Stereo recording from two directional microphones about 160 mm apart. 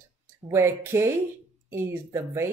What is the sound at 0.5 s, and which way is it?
Speech, 15° right (ahead or behind).